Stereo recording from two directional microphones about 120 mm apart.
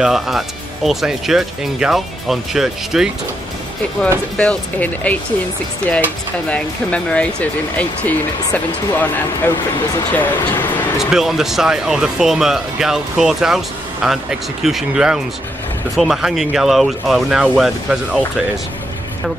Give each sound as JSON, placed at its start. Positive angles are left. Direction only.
{"t": 0.0, "sound": "speech", "side_deg": 0}
{"t": 4.4, "sound": "speech", "side_deg": 10}
{"t": 11.0, "sound": "speech", "side_deg": -5}